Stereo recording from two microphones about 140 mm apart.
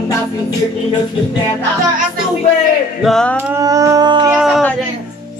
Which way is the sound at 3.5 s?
25° right (ahead or behind).